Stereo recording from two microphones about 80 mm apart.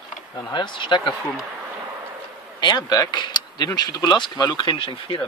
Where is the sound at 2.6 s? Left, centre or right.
Left.